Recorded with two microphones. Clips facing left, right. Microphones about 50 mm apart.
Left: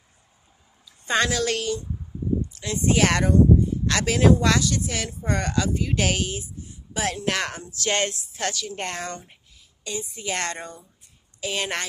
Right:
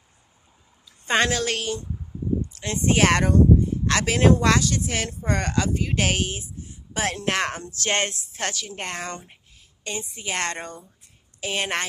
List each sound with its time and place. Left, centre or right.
1.0 s speech: right
3.8 s speech: right
8.7 s speech: centre
9.0 s speech: right